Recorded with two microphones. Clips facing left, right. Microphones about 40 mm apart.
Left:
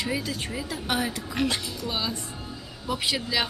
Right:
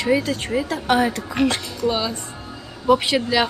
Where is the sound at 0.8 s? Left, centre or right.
Right.